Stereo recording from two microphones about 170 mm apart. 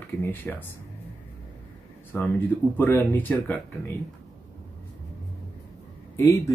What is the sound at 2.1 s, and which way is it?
Speech, 15° left (ahead or behind).